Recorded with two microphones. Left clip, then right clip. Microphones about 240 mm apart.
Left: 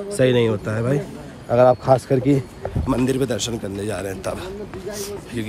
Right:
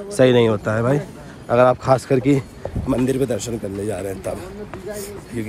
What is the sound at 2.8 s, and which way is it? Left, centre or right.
Speech, centre.